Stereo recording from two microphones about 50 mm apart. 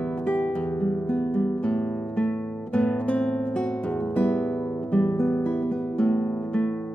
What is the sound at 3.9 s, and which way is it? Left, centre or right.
Music, left.